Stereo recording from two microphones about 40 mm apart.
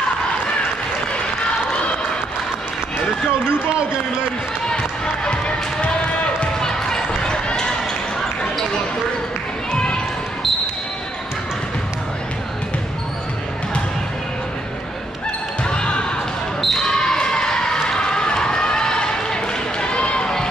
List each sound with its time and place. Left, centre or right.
4.6 s basketball bounce: left
7.4 s run: left
15.6 s basketball bounce: left
16.6 s basketball bounce: centre; by 20.3 s left